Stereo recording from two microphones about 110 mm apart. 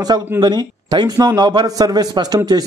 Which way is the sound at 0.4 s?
40° right (ahead or behind).